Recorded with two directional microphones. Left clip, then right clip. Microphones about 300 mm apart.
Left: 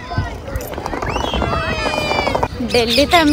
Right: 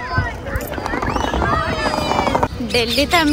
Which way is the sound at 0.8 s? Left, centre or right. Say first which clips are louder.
Right 1 dB; left.